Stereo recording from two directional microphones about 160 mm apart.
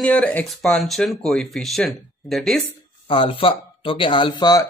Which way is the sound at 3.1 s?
35° left (ahead or behind).